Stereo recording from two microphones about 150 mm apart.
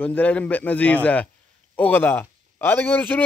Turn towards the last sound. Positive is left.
turn(degrees=15)  # may be behind; listen again after turning